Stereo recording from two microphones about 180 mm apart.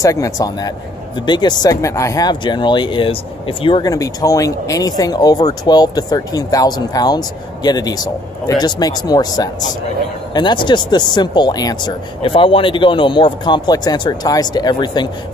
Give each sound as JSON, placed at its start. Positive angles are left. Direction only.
{"t": 0.0, "sound": "speech", "side_deg": 20}